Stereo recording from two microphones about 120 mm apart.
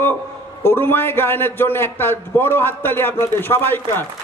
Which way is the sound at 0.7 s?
20° left (ahead or behind).